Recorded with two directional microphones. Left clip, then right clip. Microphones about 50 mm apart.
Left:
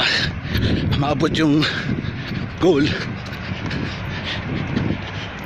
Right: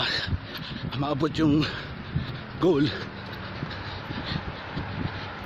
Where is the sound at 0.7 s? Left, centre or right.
Right.